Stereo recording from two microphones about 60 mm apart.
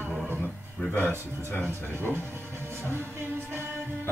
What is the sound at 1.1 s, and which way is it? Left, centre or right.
Speech, left.